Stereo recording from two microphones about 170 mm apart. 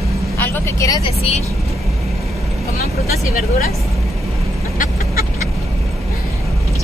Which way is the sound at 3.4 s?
55° left (ahead or behind).